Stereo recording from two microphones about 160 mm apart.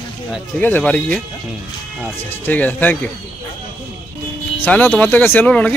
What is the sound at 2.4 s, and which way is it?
Speech, 10° left (ahead or behind).